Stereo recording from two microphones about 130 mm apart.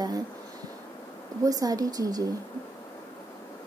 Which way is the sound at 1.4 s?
30° right (ahead or behind).